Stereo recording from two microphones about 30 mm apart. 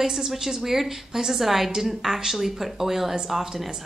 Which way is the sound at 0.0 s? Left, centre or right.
Right.